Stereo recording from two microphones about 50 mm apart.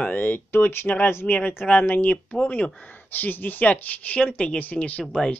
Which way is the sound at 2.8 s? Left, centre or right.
Left.